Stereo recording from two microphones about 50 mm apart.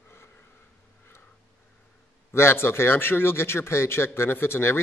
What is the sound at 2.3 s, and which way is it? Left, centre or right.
Speech, left.